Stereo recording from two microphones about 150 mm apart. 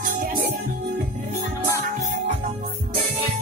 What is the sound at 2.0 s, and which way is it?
Music, 55° right (ahead or behind).